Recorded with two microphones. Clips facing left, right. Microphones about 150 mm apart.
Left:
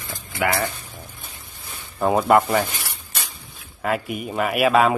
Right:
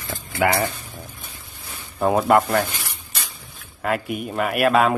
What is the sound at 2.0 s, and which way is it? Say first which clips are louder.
Speech: even; centre (ahead or behind).